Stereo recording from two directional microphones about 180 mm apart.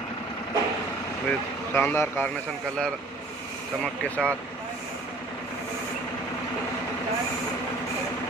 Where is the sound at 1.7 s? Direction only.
10° left (ahead or behind).